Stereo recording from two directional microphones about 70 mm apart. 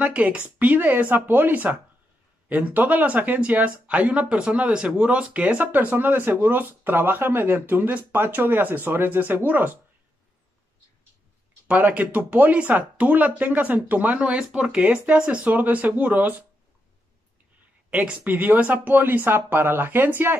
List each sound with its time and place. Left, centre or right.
0.0 s speech: centre
11.6 s speech: right
17.8 s speech: centre